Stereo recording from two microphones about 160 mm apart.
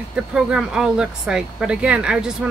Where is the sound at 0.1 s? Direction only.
5° right (ahead or behind).